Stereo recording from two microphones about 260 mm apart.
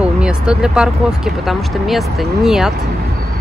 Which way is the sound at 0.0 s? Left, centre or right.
Centre.